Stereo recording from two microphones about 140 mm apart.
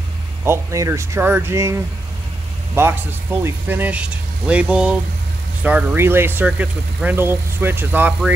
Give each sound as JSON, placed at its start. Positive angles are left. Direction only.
{"t": 0.4, "sound": "speech", "side_deg": -20}